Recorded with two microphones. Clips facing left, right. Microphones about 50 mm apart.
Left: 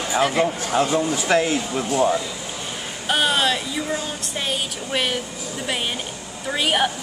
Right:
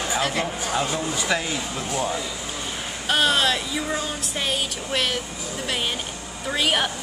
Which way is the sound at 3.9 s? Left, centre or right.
Centre.